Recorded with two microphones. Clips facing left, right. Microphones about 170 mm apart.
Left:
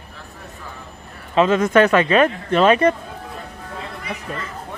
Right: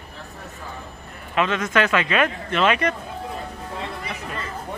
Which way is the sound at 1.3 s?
30° left (ahead or behind).